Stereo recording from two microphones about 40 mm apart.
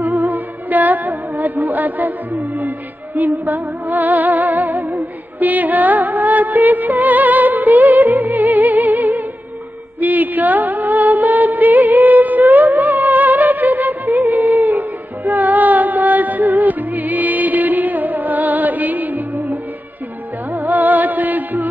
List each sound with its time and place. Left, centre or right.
0.0 s music: right
3.2 s music: right
14.1 s music: right